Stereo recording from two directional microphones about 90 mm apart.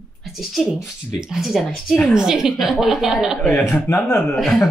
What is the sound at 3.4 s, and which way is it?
Speech, 20° left (ahead or behind).